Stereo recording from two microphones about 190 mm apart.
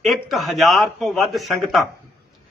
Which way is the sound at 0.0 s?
Centre (ahead or behind).